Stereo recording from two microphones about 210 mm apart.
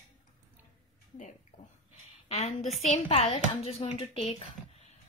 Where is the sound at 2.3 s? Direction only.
30° left (ahead or behind).